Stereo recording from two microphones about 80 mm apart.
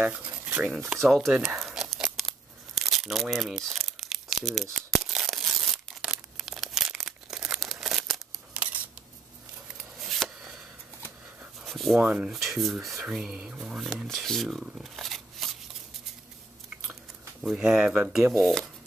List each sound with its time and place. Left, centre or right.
0.3 s a sound: centre
1.0 s speech: centre
1.3 s tearing: centre
5.9 s a sound: centre
7.3 s crumpling: centre
9.8 s a sound: centre
11.6 s a sound: centre
12.0 s speech: right
12.3 s speech: centre
14.0 s speech: centre
17.4 s speech: centre
18.1 s speech: centre